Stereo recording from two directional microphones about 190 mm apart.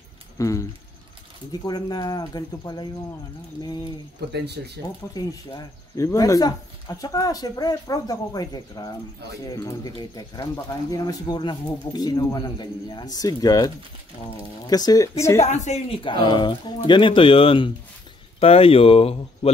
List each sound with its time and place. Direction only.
0.4 s speech: 15° left (ahead or behind)
4.3 s speech: 60° right (ahead or behind)
5.1 s speech: 20° left (ahead or behind)
15.4 s speech: 35° left (ahead or behind)